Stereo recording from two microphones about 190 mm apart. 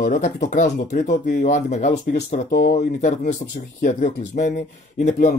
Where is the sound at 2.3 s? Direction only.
40° left (ahead or behind).